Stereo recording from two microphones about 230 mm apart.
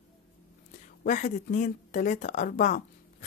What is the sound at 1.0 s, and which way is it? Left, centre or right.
Speech, left.